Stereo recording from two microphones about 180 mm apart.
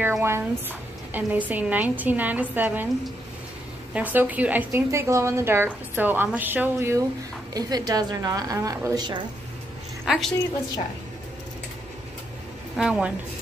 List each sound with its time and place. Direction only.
0.0 s a woman's voice: 10° right (ahead or behind)
3.9 s a woman's voice: 10° right (ahead or behind)
10.1 s a woman's voice: 5° right (ahead or behind)
12.7 s a woman's voice: 5° right (ahead or behind)